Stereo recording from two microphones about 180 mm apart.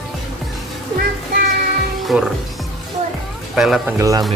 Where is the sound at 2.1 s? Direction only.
5° right (ahead or behind).